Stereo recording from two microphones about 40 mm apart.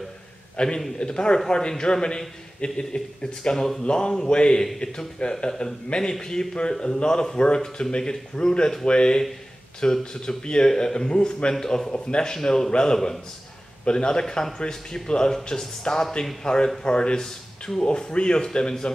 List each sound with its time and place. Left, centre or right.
0.6 s a man's voice: left
3.5 s speech: centre
3.8 s a man's voice: left
17.2 s speech: centre
17.8 s a man's voice: left